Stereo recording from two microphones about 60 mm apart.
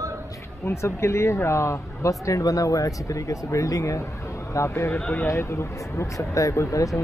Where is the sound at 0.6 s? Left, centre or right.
Left.